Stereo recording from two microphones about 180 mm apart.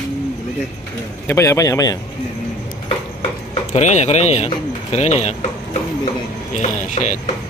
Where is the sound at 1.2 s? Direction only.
15° left (ahead or behind).